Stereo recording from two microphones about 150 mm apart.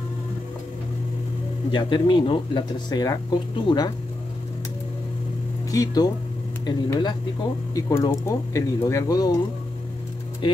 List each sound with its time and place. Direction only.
1.7 s speech: 30° left (ahead or behind)
5.7 s speech: 25° left (ahead or behind)
10.4 s speech: 30° left (ahead or behind)